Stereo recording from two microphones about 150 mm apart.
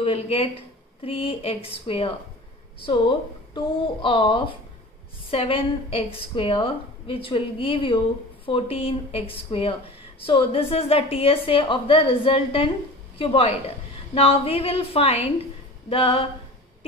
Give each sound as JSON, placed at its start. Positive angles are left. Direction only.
{"t": 0.0, "sound": "speech", "side_deg": 40}